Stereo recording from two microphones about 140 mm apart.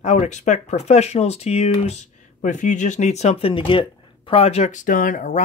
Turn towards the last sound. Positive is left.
turn(degrees=65)  # may be behind; listen again after turning